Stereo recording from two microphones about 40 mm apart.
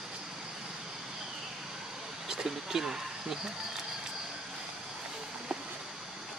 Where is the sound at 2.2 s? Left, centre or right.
Centre.